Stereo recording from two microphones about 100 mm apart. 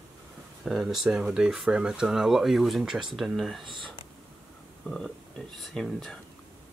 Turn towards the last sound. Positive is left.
turn(degrees=0)  # may be behind; listen again after turning